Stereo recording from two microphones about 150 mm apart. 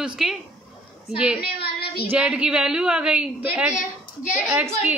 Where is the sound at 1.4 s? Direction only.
90° left.